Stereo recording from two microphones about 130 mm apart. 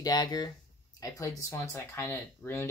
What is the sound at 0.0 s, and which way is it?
Speech, 30° left (ahead or behind).